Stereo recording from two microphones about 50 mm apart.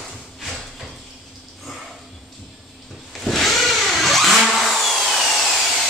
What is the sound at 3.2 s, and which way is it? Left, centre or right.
Vehicle, centre.